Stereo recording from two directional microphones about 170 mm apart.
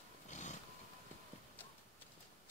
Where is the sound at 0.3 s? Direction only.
45° left (ahead or behind).